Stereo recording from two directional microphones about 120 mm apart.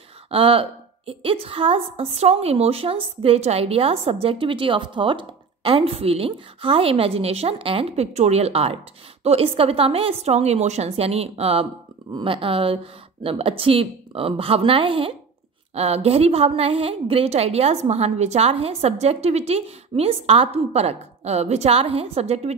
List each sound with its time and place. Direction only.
0.3 s a woman's voice: 50° right (ahead or behind)
12.1 s a woman's voice: 45° right (ahead or behind)
15.7 s a woman's voice: 60° right (ahead or behind)